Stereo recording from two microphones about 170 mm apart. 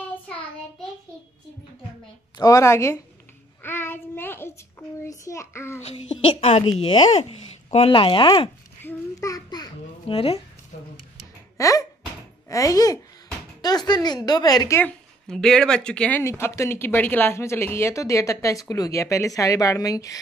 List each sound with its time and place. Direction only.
2.3 s speech: 20° left (ahead or behind)
3.6 s child singing: 15° left (ahead or behind)
5.8 s a woman's voice: 35° left (ahead or behind)
8.8 s babbling: 20° left (ahead or behind)
11.5 s a sound: 20° left (ahead or behind)
12.4 s a woman's voice: 20° left (ahead or behind)
14.8 s speech: 5° left (ahead or behind); by 20.2 s 20° left (ahead or behind)